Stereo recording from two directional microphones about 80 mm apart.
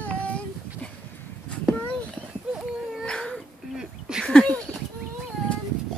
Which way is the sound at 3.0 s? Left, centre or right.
Centre.